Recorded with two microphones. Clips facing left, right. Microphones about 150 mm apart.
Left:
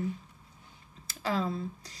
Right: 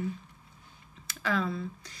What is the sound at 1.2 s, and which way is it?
Speech, 30° left (ahead or behind).